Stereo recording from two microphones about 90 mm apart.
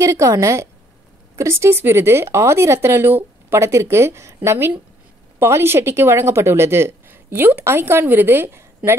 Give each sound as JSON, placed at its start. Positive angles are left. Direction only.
{"t": 0.0, "sound": "a woman's voice", "side_deg": -35}